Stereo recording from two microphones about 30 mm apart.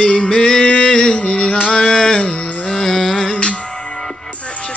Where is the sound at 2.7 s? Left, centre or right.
Centre.